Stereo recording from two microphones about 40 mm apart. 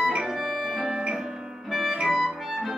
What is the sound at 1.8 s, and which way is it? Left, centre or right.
Music, right.